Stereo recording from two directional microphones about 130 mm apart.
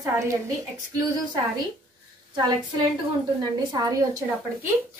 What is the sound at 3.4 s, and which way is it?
Speech, 30° right (ahead or behind).